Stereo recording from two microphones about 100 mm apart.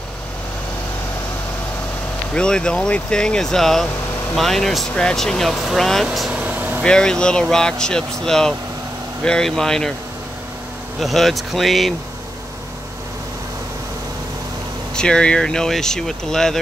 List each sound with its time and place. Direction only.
2.3 s speech: 10° left (ahead or behind)
6.4 s vehicle: 15° right (ahead or behind)
6.8 s speech: 5° left (ahead or behind)
11.0 s speech: centre (ahead or behind)
15.0 s speech: 10° left (ahead or behind)